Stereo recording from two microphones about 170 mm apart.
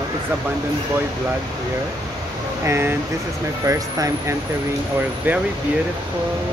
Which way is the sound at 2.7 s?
15° right (ahead or behind).